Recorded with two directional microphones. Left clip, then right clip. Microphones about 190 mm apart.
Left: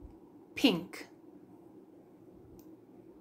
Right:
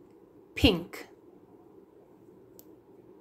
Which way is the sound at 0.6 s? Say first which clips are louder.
Right 4 dB; 10° right (ahead or behind).